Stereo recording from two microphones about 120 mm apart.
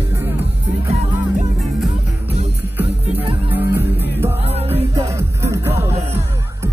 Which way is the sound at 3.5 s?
20° right (ahead or behind).